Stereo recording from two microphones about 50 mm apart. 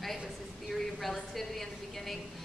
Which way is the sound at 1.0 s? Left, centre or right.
Centre.